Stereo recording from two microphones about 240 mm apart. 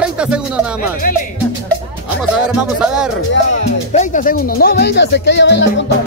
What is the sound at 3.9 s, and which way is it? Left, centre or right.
Speech, left.